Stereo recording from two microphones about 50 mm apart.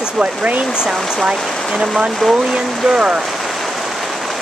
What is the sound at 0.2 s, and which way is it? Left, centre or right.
Speech, right.